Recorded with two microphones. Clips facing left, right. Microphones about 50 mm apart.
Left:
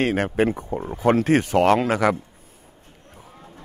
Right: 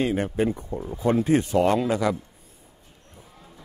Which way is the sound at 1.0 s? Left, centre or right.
Left.